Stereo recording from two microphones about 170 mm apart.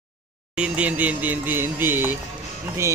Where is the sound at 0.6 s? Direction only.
10° right (ahead or behind).